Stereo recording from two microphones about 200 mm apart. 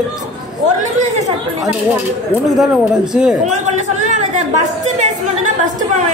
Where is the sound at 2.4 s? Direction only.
5° right (ahead or behind).